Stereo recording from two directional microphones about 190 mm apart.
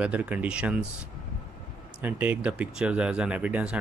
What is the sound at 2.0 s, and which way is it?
Speech, 10° right (ahead or behind).